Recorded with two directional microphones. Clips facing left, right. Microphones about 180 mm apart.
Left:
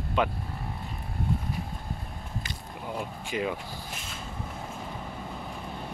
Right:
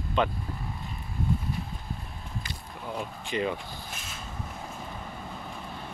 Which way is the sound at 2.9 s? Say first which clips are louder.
Right 1 dB; 5° left (ahead or behind).